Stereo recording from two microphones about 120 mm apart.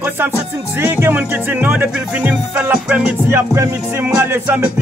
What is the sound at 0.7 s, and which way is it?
Music, 20° right (ahead or behind).